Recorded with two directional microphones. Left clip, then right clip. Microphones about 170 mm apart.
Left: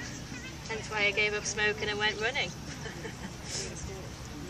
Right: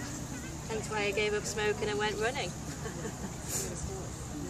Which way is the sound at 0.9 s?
55° right (ahead or behind).